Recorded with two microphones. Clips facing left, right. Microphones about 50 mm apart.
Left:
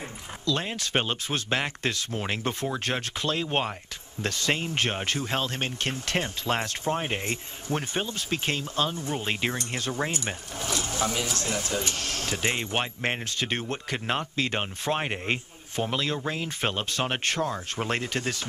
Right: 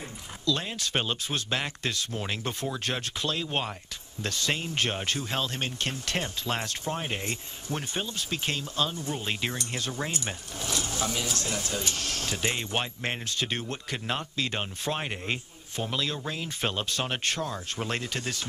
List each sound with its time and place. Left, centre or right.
0.5 s speech: left
12.8 s speech: left
13.4 s speech: left
13.9 s speech: left
14.6 s speech: left